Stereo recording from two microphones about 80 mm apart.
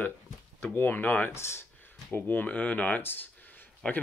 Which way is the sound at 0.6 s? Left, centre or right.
Left.